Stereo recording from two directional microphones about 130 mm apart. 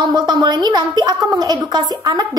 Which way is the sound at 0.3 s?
35° right (ahead or behind).